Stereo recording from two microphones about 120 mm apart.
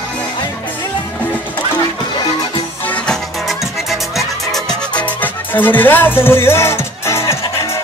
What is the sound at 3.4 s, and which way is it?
Music, centre (ahead or behind).